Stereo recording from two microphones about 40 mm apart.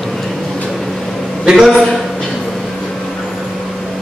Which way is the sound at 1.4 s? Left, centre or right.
Centre.